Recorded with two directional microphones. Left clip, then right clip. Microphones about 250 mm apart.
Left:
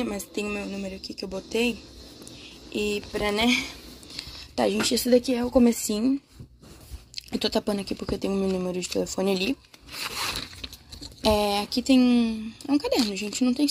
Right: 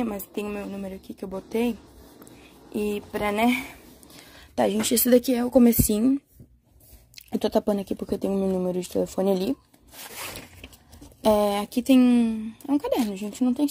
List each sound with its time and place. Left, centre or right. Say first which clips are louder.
0.0 s speech: even; right
2.8 s speech: even; right
7.2 s speech: right 3 dB; right
11.2 s speech: right 2 dB; right